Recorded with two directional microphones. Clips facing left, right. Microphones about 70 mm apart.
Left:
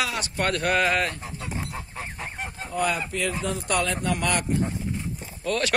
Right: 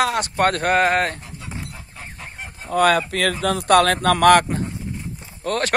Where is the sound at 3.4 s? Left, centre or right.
Right.